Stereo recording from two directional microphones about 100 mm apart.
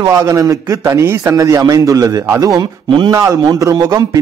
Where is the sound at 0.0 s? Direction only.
30° right (ahead or behind).